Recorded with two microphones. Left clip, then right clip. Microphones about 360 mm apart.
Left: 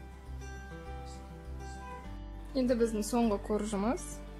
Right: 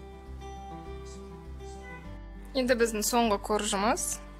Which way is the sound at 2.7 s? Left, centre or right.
Right.